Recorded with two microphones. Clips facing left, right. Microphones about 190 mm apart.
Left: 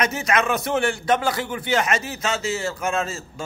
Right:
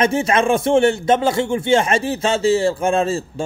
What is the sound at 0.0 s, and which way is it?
A man's voice, 30° right (ahead or behind).